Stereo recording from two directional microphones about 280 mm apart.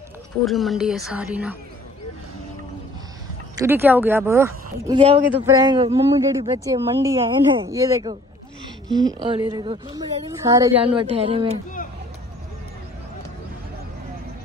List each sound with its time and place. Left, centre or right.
0.5 s a woman's voice: centre
3.5 s a woman's voice: centre